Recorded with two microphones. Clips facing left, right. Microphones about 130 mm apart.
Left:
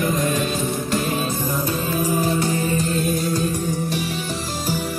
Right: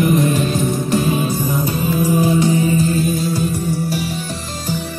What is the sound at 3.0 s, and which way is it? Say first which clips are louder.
Music: right 3 dB; centre (ahead or behind).